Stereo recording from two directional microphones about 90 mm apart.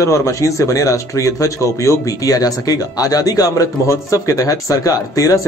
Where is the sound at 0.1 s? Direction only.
35° left (ahead or behind).